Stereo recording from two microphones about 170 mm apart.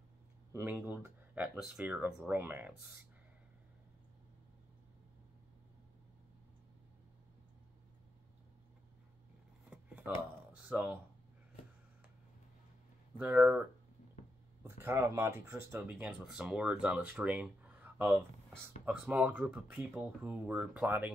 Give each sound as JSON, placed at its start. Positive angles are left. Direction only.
{"t": 0.5, "sound": "speech", "side_deg": -15}
{"t": 9.7, "sound": "a sound", "side_deg": -10}
{"t": 13.2, "sound": "speech", "side_deg": -10}
{"t": 14.9, "sound": "speech", "side_deg": -15}